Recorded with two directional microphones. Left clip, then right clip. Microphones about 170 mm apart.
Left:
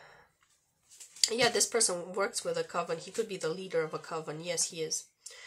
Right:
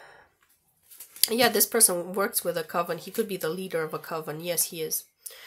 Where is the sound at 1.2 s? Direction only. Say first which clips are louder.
Right 5 dB; 45° right (ahead or behind).